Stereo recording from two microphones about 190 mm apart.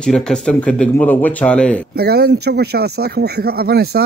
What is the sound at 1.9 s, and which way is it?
Speech, 55° right (ahead or behind).